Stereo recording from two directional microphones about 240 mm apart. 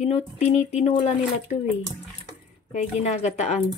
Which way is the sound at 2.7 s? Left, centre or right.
Left.